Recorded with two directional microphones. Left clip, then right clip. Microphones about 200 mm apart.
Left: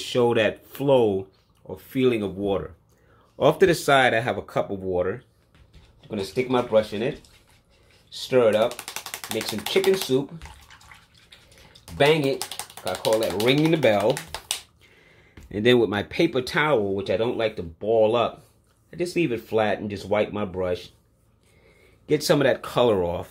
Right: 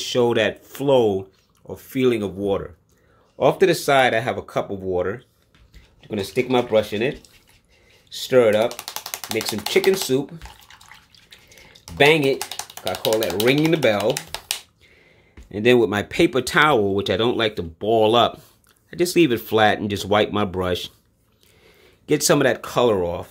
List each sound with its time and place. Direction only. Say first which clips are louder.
0.0 s speech: right 2 dB; 10° right (ahead or behind)
3.3 s speech: right 2 dB; centre (ahead or behind)
6.0 s speech: right 3 dB; 30° right (ahead or behind)
8.1 s speech: right 3 dB; 35° right (ahead or behind)
11.8 s speech: right 4 dB; 30° right (ahead or behind)
15.4 s speech: right 3 dB; 5° right (ahead or behind); by 20.9 s 40° right (ahead or behind)
22.0 s speech: right 3 dB; 25° right (ahead or behind); by 23.2 s 5° right (ahead or behind)